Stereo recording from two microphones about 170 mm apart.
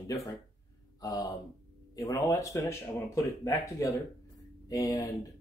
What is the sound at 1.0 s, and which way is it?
Speech, 20° left (ahead or behind).